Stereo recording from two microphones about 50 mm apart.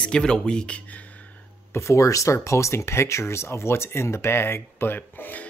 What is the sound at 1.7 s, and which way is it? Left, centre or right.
Speech, left.